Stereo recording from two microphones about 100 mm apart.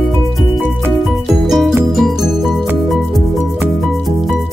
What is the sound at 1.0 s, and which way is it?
Music, centre (ahead or behind).